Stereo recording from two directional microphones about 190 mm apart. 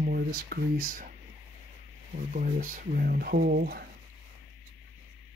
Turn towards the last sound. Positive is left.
turn(degrees=-50)  # may be behind; listen again after turning